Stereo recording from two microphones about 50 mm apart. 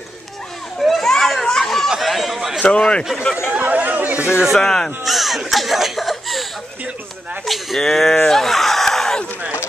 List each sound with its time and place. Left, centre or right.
0.7 s children playing: centre
1.4 s chatter: centre
2.0 s a sound: centre
2.8 s speech: centre
3.6 s chatter: right
4.6 s speech: centre
5.0 s a sound: centre
7.4 s speech: centre
8.3 s a sound: centre